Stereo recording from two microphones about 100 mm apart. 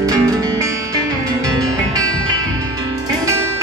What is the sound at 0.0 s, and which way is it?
Music, 35° right (ahead or behind).